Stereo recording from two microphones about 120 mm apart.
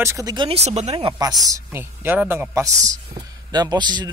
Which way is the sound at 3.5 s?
35° right (ahead or behind).